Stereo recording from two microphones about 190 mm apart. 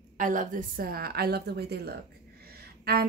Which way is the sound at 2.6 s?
55° right (ahead or behind).